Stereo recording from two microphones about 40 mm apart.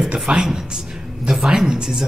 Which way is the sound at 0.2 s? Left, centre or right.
Centre.